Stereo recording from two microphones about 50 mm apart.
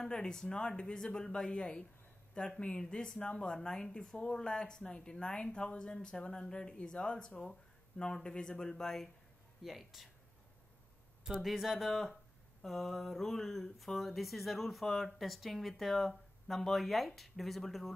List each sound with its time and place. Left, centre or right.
0.0 s speech: centre
9.6 s speech: centre
11.2 s speech: centre